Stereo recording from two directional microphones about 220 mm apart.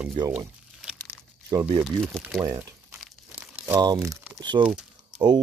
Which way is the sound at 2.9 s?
5° right (ahead or behind).